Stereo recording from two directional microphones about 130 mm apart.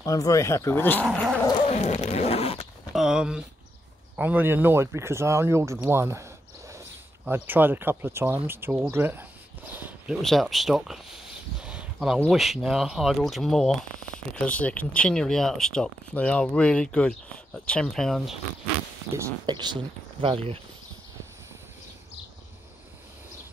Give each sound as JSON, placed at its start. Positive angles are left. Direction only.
{"t": 0.0, "sound": "speech", "side_deg": 25}
{"t": 1.7, "sound": "zipper", "side_deg": 55}
{"t": 2.9, "sound": "a sound", "side_deg": -5}
{"t": 4.2, "sound": "speech", "side_deg": -15}
{"t": 7.2, "sound": "speech", "side_deg": -15}
{"t": 10.2, "sound": "a sound", "side_deg": 0}
{"t": 12.3, "sound": "speech", "side_deg": 0}
{"t": 19.4, "sound": "speech", "side_deg": -35}